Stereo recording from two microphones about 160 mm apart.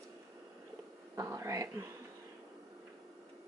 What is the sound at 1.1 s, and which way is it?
Speech, 20° right (ahead or behind).